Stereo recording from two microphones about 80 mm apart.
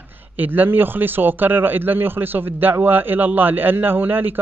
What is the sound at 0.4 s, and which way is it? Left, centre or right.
A man's voice, right.